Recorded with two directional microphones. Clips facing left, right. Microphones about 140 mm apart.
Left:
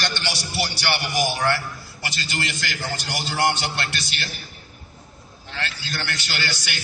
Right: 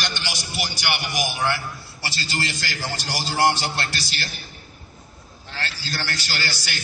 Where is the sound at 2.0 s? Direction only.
35° right (ahead or behind).